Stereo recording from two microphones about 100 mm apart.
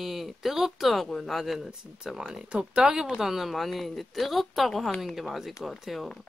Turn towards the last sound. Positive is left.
turn(degrees=0)  # may be behind; listen again after turning